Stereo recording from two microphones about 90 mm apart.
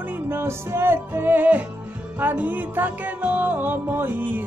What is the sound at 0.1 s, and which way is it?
Music, 25° right (ahead or behind).